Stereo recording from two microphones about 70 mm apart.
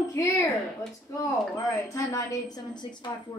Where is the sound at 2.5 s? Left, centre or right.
Left.